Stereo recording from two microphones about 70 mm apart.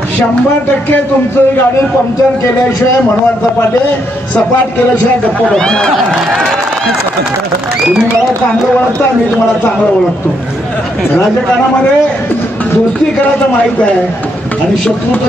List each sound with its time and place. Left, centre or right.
0.8 s music: left
5.5 s speech: centre